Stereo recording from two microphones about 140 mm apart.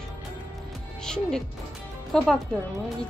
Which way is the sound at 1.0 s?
5° left (ahead or behind).